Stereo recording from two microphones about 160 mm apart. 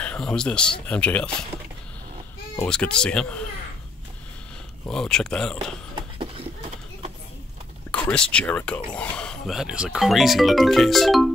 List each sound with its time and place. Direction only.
0.0 s speech: 5° left (ahead or behind)
2.6 s speech: 5° left (ahead or behind)
4.8 s speech: 5° left (ahead or behind)
5.9 s a sound: 35° right (ahead or behind)
7.9 s speech: 5° left (ahead or behind)